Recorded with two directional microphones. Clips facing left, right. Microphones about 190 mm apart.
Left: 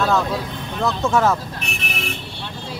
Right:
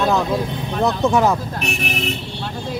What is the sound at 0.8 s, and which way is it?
Speech, 15° right (ahead or behind).